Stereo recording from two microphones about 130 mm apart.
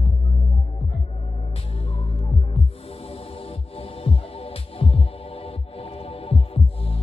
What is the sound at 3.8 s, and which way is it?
Music, 50° left (ahead or behind).